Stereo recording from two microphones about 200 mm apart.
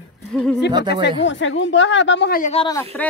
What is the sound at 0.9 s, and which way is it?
Speech, 55° left (ahead or behind).